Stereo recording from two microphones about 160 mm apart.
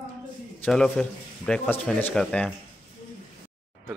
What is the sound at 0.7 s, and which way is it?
Speech, 5° left (ahead or behind).